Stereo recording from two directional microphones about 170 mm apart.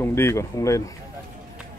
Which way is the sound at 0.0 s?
15° left (ahead or behind).